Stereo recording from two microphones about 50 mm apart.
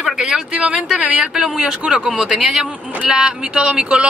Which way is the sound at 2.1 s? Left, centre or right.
Centre.